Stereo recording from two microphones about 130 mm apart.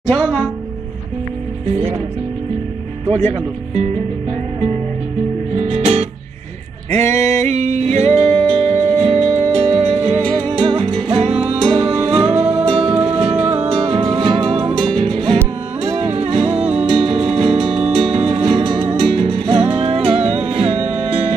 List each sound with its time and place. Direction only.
0.1 s music: 5° left (ahead or behind)
3.1 s speech: 55° right (ahead or behind)
5.6 s music: 55° right (ahead or behind)